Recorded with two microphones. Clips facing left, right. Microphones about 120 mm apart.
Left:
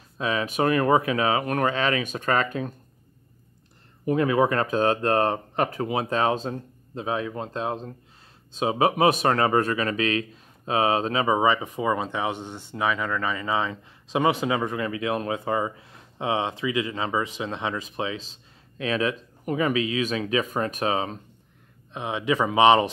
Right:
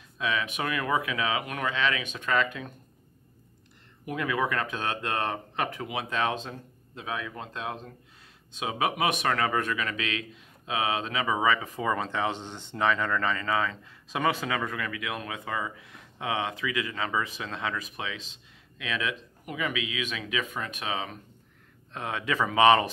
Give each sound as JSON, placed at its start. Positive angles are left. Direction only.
{"t": 0.2, "sound": "speech", "side_deg": 35}
{"t": 4.0, "sound": "speech", "side_deg": 35}
{"t": 21.9, "sound": "speech", "side_deg": 20}